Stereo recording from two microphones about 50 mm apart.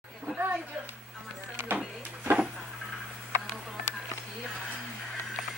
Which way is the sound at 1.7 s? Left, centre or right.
Right.